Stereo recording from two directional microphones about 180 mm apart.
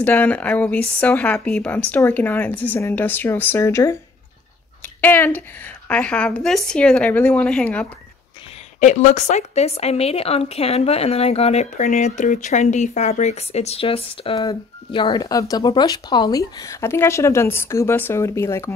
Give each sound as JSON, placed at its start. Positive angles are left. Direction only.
{"t": 0.0, "sound": "speech", "side_deg": 10}
{"t": 5.0, "sound": "speech", "side_deg": 10}
{"t": 8.7, "sound": "speech", "side_deg": 40}